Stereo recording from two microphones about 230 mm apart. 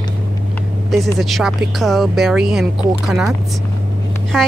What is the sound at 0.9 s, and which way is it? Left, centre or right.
Speech, centre.